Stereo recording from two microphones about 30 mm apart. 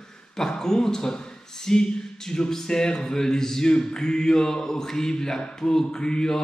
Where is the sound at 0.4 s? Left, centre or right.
Centre.